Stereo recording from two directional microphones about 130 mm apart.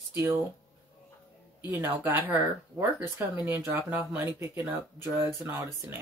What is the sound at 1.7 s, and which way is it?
Speech, 15° right (ahead or behind).